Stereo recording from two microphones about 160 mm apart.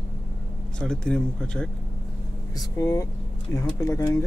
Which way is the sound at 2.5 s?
20° left (ahead or behind).